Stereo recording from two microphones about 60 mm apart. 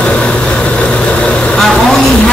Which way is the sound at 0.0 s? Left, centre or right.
Centre.